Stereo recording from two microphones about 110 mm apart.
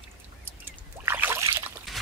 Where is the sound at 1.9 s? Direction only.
Centre (ahead or behind).